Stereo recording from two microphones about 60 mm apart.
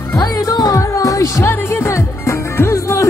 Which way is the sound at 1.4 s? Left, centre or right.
Left.